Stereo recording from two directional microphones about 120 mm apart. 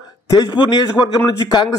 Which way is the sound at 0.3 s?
35° left (ahead or behind).